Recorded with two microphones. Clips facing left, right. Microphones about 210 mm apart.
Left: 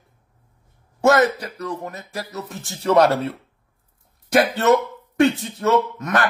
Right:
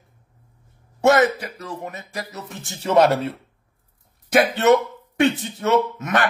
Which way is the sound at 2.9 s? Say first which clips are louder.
Left 1 dB; 25° right (ahead or behind).